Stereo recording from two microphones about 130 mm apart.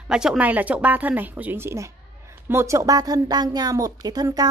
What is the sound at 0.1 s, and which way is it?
A woman's voice, 5° right (ahead or behind).